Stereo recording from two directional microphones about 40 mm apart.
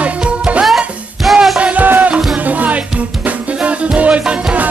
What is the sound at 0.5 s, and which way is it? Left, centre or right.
Music, right.